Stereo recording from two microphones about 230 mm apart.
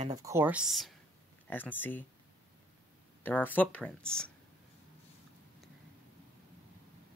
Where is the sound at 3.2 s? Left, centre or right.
Centre.